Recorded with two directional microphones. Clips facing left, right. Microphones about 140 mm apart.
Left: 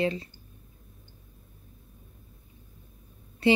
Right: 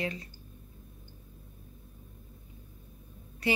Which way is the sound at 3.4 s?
25° left (ahead or behind).